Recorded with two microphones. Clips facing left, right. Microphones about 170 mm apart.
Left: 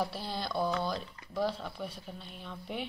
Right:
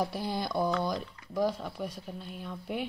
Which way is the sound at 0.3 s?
15° right (ahead or behind).